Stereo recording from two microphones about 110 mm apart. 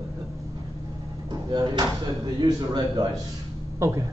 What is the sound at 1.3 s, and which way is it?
Speech, 40° right (ahead or behind).